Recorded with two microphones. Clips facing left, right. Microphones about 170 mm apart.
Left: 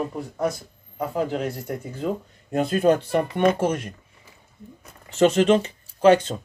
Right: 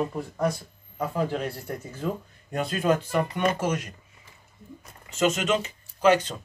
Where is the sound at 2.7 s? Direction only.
35° left (ahead or behind).